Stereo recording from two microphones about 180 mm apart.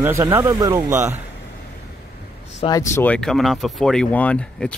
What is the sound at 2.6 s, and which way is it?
Speech, 20° left (ahead or behind).